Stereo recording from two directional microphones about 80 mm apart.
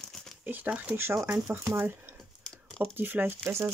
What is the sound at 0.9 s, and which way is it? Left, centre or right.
Speech, right.